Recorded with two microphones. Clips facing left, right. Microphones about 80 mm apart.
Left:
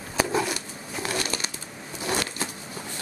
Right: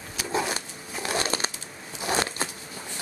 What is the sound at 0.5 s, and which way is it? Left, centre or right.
Crumpling, right.